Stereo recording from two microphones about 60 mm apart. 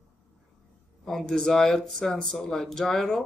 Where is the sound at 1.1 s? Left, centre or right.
Centre.